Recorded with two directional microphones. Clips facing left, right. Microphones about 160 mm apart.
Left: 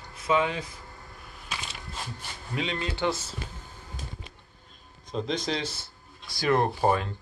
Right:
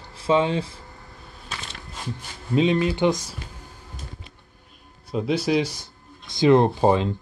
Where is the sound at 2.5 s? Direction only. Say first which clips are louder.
Right 12 dB; 20° right (ahead or behind).